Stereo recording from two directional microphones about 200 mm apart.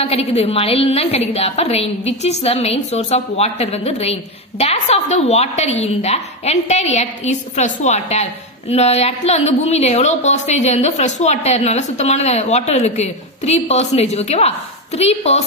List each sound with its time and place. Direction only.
0.0 s a woman's voice: 30° left (ahead or behind)